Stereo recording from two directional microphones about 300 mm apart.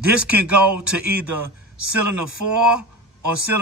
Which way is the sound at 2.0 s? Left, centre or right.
Right.